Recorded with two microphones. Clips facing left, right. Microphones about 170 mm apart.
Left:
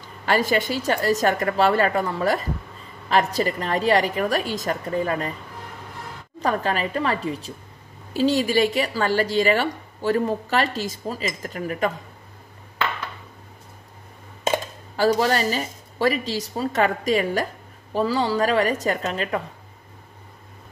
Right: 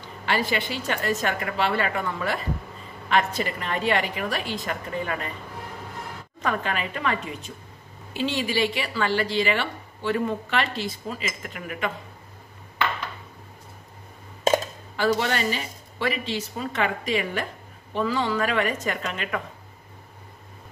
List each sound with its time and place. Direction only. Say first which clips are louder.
0.2 s speech: left 5 dB; 40° left (ahead or behind)
6.4 s speech: left 4 dB; 35° left (ahead or behind)
15.0 s speech: left 4 dB; 40° left (ahead or behind)